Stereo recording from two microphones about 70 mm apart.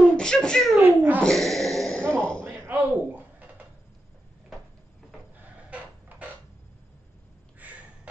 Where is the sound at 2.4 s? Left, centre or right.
Right.